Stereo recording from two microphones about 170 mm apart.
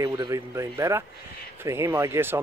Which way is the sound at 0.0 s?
20° right (ahead or behind).